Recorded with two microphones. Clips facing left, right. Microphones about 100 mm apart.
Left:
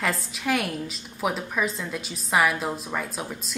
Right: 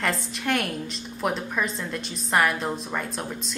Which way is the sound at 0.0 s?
Centre (ahead or behind).